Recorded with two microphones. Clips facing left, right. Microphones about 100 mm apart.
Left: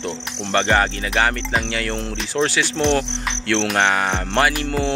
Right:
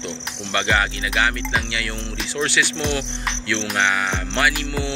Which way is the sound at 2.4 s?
40° left (ahead or behind).